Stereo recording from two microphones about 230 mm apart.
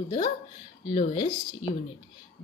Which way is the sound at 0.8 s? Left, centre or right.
Left.